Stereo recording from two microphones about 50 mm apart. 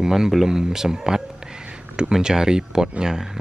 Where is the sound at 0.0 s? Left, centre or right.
Centre.